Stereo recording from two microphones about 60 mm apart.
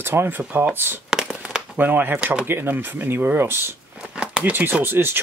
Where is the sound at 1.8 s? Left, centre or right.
Right.